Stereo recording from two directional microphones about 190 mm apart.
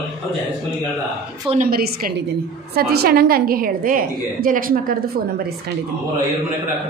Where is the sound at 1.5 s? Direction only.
50° right (ahead or behind).